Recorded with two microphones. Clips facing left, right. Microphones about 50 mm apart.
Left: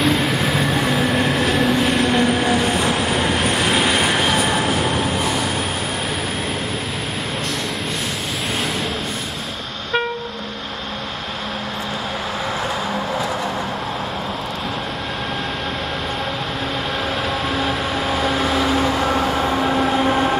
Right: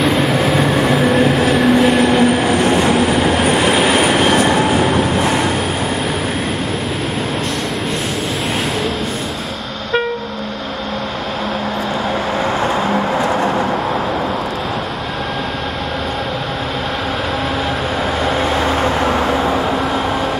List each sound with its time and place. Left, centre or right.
0.0 s train: centre